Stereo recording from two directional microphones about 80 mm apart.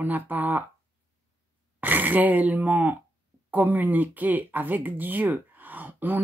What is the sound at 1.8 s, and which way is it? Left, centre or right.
Speech, right.